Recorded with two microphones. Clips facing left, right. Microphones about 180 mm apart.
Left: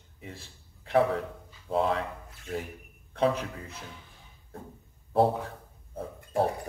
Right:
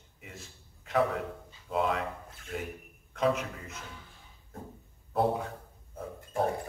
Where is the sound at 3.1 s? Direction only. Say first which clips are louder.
Left 2 dB; 30° left (ahead or behind).